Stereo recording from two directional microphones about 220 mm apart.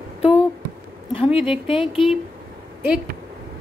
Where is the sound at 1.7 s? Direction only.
25° left (ahead or behind).